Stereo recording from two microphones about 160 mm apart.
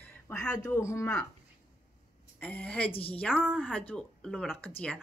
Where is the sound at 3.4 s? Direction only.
5° right (ahead or behind).